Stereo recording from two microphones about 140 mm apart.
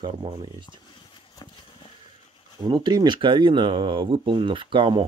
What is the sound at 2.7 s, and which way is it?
Speech, 30° right (ahead or behind).